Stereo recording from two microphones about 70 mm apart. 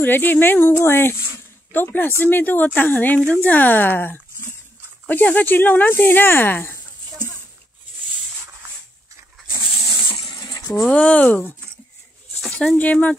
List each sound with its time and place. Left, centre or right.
0.0 s speech: left
10.9 s speech: centre
12.4 s a sound: centre
12.7 s speech: left